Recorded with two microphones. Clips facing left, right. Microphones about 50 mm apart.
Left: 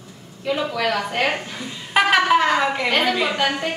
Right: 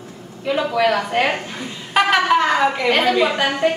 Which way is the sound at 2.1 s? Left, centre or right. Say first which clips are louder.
Even; centre.